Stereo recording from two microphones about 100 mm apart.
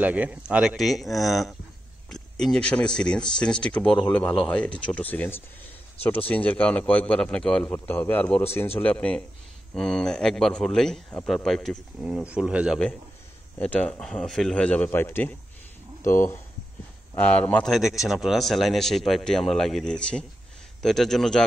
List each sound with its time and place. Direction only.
0.0 s speech: 15° right (ahead or behind); by 7.7 s 10° left (ahead or behind)
7.7 s speech: 20° left (ahead or behind); by 11.8 s centre (ahead or behind)
12.3 s speech: 10° right (ahead or behind)
13.6 s speech: 15° left (ahead or behind)
17.1 s speech: 15° left (ahead or behind)
17.6 s speech: centre (ahead or behind)